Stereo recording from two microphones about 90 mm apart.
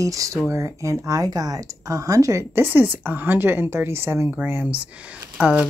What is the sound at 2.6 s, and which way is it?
Speech, 20° right (ahead or behind).